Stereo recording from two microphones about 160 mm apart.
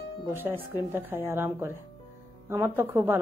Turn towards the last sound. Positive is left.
turn(degrees=-15)  # may be behind; listen again after turning